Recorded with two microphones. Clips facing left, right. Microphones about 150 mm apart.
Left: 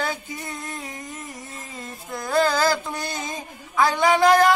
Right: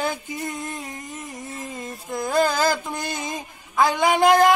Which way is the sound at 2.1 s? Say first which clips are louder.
Even; 15° right (ahead or behind).